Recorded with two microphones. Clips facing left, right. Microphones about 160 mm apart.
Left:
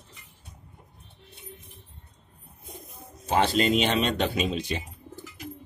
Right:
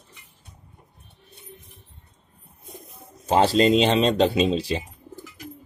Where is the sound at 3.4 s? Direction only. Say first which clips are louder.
Right 5 dB; 35° right (ahead or behind).